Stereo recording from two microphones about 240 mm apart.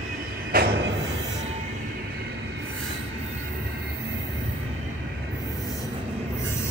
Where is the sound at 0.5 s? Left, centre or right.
Right.